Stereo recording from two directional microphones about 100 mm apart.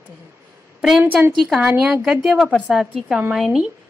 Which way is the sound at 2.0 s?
5° right (ahead or behind).